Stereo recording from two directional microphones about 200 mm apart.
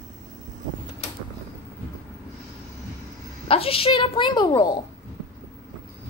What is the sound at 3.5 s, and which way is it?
A woman's voice, 30° left (ahead or behind).